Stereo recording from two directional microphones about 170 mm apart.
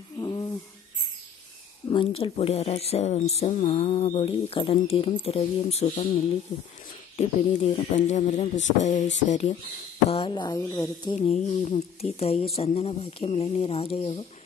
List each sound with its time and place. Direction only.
0.2 s a sound: 25° left (ahead or behind)
1.9 s speech: 30° left (ahead or behind)
10.0 s speech: 30° left (ahead or behind)
11.1 s speech: 40° left (ahead or behind)